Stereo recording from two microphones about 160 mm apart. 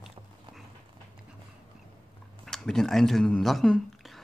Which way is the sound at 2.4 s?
5° left (ahead or behind).